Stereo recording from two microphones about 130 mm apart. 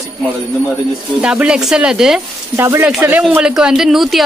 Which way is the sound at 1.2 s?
5° right (ahead or behind).